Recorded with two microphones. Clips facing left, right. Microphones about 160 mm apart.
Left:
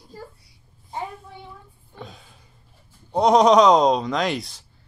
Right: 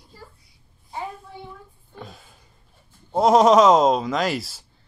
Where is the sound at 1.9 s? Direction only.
Centre (ahead or behind).